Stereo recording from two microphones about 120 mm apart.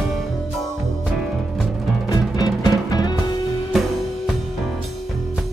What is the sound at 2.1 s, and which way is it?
Music, 30° left (ahead or behind).